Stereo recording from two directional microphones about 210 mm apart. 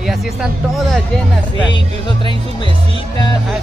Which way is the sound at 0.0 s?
Centre (ahead or behind).